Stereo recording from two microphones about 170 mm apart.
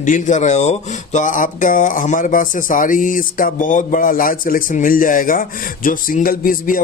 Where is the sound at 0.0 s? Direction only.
45° left (ahead or behind).